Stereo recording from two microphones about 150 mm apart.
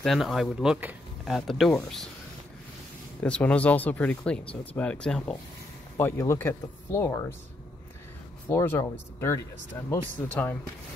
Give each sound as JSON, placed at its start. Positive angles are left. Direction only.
{"t": 0.0, "sound": "speech", "side_deg": 0}
{"t": 3.2, "sound": "speech", "side_deg": 10}
{"t": 8.5, "sound": "speech", "side_deg": 15}